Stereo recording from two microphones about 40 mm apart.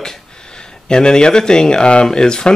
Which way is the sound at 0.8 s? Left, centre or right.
Centre.